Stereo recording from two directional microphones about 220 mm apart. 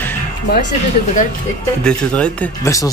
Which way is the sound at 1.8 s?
5° left (ahead or behind).